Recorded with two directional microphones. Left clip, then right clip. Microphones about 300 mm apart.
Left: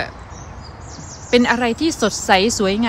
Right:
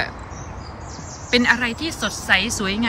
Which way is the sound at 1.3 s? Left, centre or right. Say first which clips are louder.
Left 2 dB; centre.